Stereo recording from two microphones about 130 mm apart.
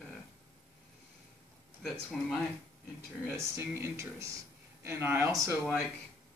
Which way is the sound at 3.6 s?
20° right (ahead or behind).